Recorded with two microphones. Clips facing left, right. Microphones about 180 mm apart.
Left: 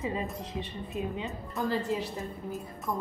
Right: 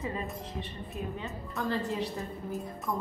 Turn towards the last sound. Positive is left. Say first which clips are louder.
# even
turn(degrees=0)  # may be behind; listen again after turning